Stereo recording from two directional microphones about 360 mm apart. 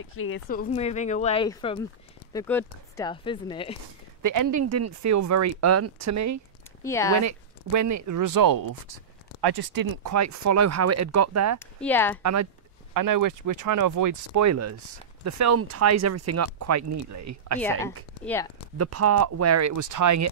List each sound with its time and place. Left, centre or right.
0.1 s speech: left; by 3.7 s centre
4.2 s speech: right
6.8 s speech: centre
7.2 s speech: right
10.1 s speech: right
11.6 s speech: centre
12.2 s speech: right
12.9 s speech: right
17.6 s speech: centre
18.8 s speech: right